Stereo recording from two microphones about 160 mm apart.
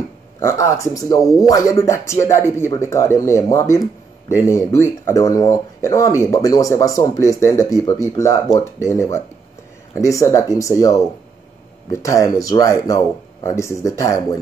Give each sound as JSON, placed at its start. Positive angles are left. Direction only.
{"t": 0.4, "sound": "speech", "side_deg": 20}